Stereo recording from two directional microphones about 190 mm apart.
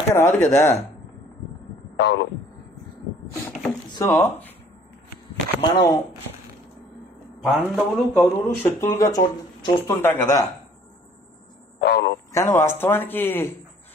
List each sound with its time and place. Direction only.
0.1 s speech: 15° left (ahead or behind)
2.0 s speech: 65° left (ahead or behind)
4.0 s speech: 10° left (ahead or behind)
5.7 s speech: 20° left (ahead or behind)
7.4 s speech: 5° right (ahead or behind)
8.5 s speech: 15° left (ahead or behind)
11.8 s a man's voice: 65° left (ahead or behind)
12.3 s speech: 15° left (ahead or behind)